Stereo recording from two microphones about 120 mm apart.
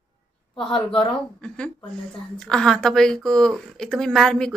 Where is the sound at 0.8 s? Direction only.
50° left (ahead or behind).